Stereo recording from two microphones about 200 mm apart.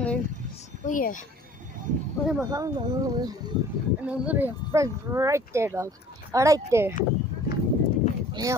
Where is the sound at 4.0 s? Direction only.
5° right (ahead or behind).